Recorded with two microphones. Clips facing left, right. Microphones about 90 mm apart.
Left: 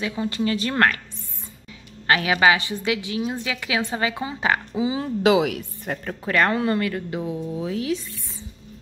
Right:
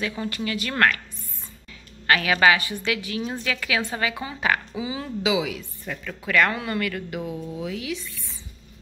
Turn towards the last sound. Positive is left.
turn(degrees=35)  # may be behind; listen again after turning